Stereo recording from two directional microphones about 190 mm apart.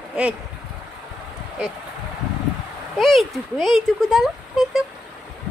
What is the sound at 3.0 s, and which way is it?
A woman's voice, centre (ahead or behind).